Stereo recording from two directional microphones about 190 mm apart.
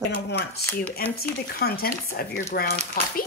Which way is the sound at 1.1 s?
55° left (ahead or behind).